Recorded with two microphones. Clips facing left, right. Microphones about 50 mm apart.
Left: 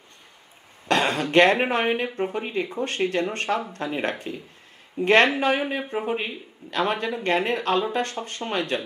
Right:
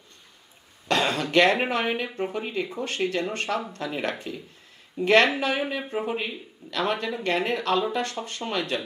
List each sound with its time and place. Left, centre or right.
0.8 s a man's voice: left